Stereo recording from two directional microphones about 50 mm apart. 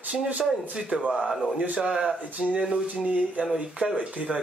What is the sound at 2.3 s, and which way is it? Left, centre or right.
Speech, right.